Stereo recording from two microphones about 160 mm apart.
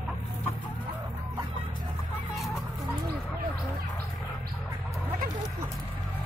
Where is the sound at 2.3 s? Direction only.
Centre (ahead or behind).